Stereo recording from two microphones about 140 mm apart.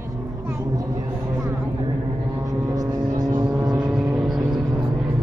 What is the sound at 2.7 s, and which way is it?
Vehicle, 30° right (ahead or behind).